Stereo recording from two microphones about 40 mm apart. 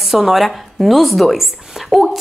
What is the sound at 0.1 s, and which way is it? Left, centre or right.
A woman's voice, centre.